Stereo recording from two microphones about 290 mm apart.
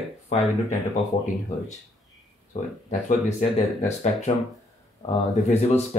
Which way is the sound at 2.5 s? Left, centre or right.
Left.